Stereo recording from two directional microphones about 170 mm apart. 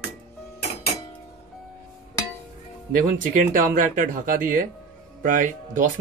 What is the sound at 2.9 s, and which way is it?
Speech, 55° right (ahead or behind).